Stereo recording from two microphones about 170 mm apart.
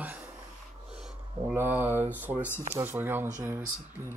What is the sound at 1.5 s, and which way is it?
Speech, 10° right (ahead or behind).